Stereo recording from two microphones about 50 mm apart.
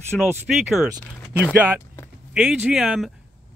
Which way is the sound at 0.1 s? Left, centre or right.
Left.